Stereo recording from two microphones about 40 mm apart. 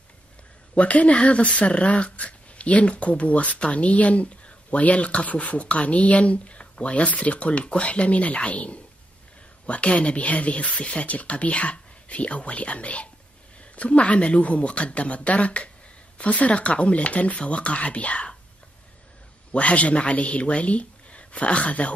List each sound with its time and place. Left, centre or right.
0.7 s speech: left
19.5 s speech: left